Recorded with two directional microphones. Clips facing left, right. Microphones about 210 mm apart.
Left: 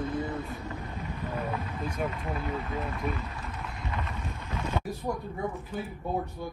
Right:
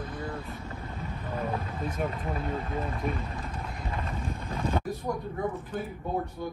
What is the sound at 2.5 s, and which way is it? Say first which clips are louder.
Speech: right 1 dB; 30° right (ahead or behind).